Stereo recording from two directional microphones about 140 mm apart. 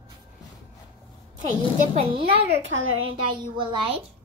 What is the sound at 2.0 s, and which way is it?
A child's voice, 40° right (ahead or behind).